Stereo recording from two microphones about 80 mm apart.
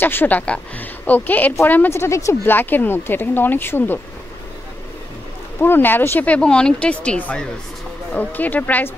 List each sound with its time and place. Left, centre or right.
0.0 s speech: left
1.9 s speech: left
2.4 s speech: left
5.6 s speech: left